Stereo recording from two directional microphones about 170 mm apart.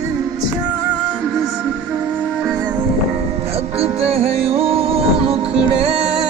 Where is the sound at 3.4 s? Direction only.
35° right (ahead or behind).